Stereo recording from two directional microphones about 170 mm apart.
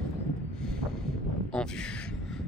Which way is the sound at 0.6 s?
5° left (ahead or behind).